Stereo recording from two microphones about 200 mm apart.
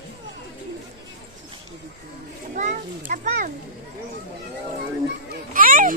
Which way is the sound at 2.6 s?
40° right (ahead or behind).